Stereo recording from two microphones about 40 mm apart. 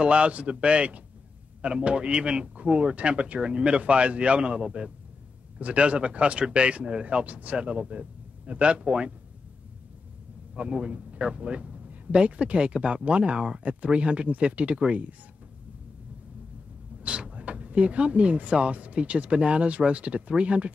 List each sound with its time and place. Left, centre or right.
0.0 s speech: right
10.7 s speech: right
17.0 s speech: right